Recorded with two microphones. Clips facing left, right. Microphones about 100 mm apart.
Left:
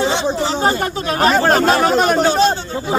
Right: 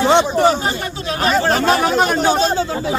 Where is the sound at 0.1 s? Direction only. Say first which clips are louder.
Right 5 dB; 55° right (ahead or behind).